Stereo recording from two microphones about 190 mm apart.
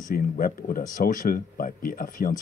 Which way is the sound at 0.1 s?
50° left (ahead or behind).